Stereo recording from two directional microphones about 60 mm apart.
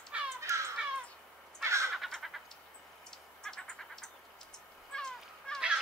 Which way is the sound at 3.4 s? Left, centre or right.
Centre.